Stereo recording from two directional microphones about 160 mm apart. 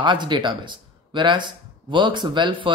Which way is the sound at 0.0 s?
30° right (ahead or behind).